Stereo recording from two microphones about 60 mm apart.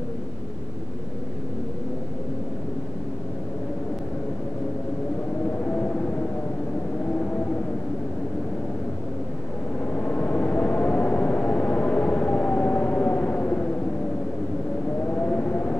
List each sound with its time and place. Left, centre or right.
5.7 s whale vocalization: left
9.9 s vehicle: left
15.0 s whale vocalization: left